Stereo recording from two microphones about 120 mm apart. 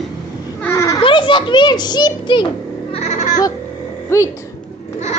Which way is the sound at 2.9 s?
70° left (ahead or behind).